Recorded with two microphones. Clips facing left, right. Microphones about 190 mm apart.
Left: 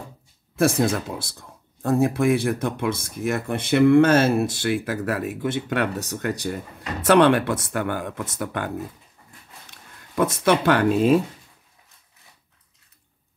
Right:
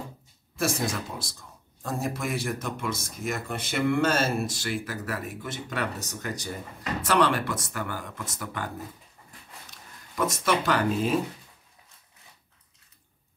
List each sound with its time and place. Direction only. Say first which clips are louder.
0.6 s speech: left 8 dB; 55° left (ahead or behind)
10.1 s speech: left 6 dB; 65° left (ahead or behind)